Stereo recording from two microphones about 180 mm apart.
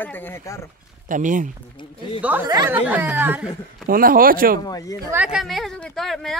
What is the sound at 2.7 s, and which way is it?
Snicker, 10° right (ahead or behind).